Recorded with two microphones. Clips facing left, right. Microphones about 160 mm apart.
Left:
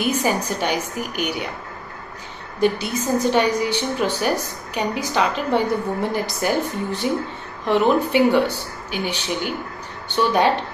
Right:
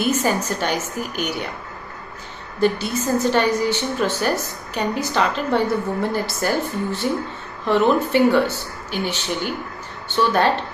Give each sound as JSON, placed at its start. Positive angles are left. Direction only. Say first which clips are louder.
{"t": 0.0, "sound": "a woman's voice", "louder": "right 1 dB", "side_deg": 15}
{"t": 2.6, "sound": "a woman's voice", "louder": "even", "side_deg": 10}